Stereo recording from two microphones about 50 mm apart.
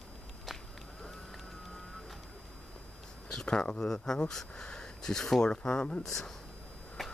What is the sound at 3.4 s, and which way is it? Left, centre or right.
Speech, centre.